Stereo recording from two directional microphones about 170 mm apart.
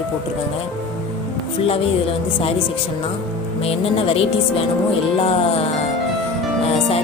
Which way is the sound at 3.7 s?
35° left (ahead or behind).